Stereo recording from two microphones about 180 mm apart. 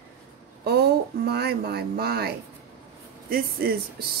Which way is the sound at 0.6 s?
65° right (ahead or behind).